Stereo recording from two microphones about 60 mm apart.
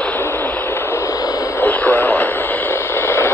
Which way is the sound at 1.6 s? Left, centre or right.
Left.